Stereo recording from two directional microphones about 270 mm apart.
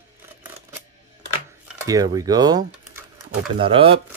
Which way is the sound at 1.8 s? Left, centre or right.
Centre.